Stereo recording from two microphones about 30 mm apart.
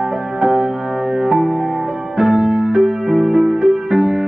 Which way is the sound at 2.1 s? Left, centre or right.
Centre.